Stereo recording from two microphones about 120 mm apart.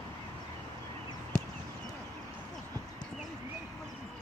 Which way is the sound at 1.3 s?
5° left (ahead or behind).